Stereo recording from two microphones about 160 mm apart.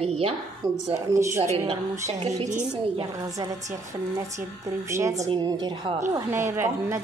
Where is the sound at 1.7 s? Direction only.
45° right (ahead or behind).